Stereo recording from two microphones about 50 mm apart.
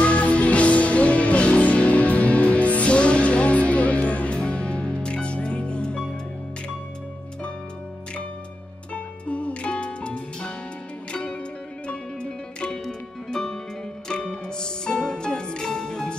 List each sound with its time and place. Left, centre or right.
0.0 s music: left
8.9 s music: left